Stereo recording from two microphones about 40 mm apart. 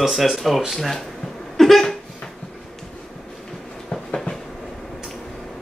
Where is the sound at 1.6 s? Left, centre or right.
Centre.